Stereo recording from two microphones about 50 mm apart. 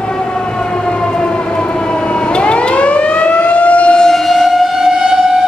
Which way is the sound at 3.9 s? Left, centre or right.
Centre.